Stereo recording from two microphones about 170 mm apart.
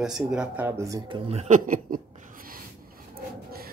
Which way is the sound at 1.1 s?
35° right (ahead or behind).